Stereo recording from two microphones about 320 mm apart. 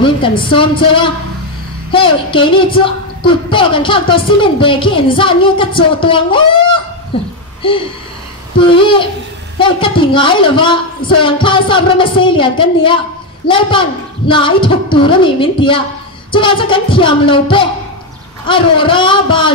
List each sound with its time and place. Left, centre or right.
0.0 s speech: centre
8.5 s speech: centre